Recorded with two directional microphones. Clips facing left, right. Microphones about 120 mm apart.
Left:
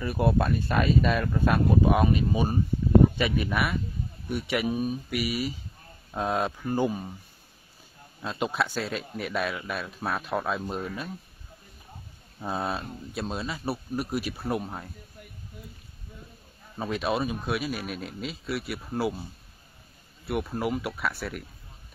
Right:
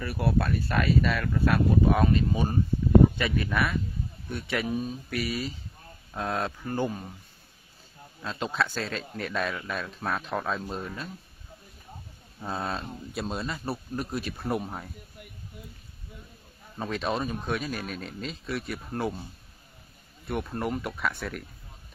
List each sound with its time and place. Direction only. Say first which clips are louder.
0.0 s speech: left 3 dB; 20° left (ahead or behind)
8.3 s speech: left 1 dB; 15° left (ahead or behind)
12.4 s speech: left 2 dB; 10° left (ahead or behind)
12.9 s speech: even; centre (ahead or behind)
16.7 s speech: left 2 dB; 5° left (ahead or behind)
20.2 s speech: left 2 dB; 5° left (ahead or behind)